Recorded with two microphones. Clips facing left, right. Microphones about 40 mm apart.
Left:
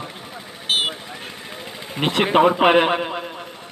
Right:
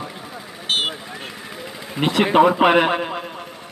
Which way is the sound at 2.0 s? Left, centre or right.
Left.